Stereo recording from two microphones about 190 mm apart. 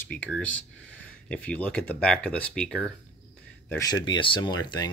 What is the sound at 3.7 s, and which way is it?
Speech, 20° left (ahead or behind).